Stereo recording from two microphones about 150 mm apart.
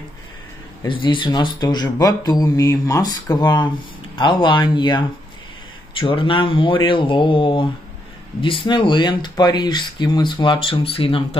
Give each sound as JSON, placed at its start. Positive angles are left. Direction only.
{"t": 0.8, "sound": "speech", "side_deg": 35}